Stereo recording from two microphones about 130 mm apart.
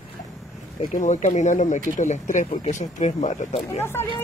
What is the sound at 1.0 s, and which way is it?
Speech, 65° left (ahead or behind).